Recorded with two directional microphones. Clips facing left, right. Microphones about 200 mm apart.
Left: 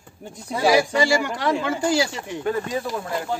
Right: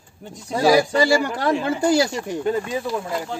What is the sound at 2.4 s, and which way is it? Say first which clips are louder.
Speech: even; 20° right (ahead or behind).